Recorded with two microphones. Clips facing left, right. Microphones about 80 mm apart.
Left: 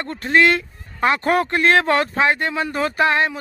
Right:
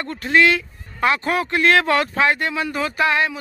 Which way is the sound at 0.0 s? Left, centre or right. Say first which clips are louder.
Even; left.